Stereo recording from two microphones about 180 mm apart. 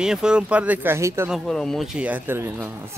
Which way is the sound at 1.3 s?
Centre (ahead or behind).